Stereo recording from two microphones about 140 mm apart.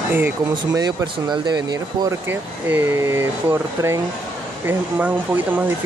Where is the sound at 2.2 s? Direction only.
15° right (ahead or behind).